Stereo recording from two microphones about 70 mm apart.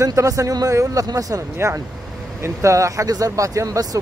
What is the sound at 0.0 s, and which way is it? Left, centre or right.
Speech, right.